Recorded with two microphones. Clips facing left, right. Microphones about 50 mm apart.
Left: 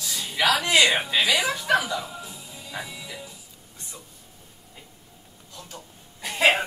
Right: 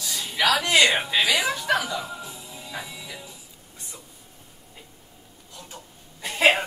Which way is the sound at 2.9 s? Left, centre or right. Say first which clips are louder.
Left 1 dB; centre.